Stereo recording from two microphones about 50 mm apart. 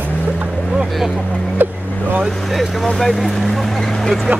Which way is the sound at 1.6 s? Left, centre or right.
Right.